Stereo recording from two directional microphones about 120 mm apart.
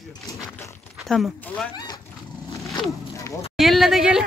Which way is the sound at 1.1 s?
Centre (ahead or behind).